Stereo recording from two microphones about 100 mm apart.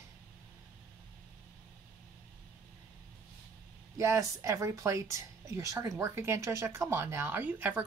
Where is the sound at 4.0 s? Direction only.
30° right (ahead or behind).